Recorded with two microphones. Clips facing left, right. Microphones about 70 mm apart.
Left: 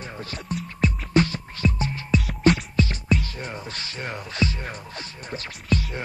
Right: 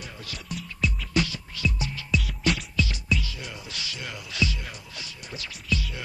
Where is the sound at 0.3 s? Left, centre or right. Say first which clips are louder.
Left 4 dB; left.